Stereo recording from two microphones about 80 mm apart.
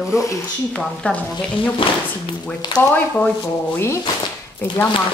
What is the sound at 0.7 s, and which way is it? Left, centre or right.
Speech, centre.